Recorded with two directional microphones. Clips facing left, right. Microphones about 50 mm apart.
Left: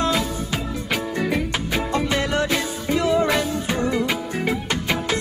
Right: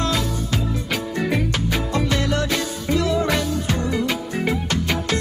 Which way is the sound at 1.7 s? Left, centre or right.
Left.